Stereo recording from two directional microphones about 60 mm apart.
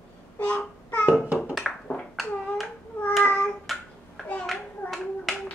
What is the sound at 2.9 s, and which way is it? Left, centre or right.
Child singing, left.